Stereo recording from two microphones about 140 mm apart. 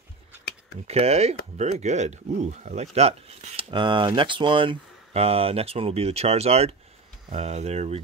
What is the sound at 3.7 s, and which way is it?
Speech, 35° right (ahead or behind).